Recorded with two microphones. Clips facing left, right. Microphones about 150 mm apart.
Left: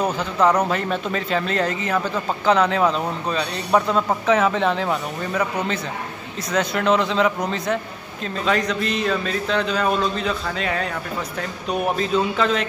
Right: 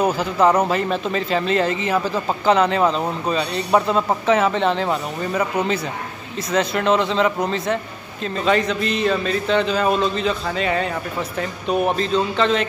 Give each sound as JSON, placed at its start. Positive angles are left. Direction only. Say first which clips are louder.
{"t": 0.0, "sound": "a man's voice", "louder": "right 2 dB", "side_deg": -5}